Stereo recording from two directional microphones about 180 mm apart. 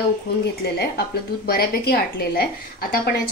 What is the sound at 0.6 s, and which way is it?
A woman's voice, 60° left (ahead or behind).